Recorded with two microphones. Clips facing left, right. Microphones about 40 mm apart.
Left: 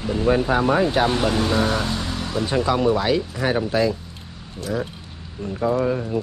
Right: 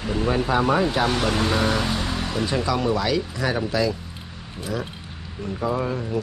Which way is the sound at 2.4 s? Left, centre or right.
Left.